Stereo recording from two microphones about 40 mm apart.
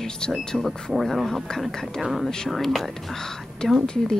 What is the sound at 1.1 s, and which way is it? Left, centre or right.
Speech, centre.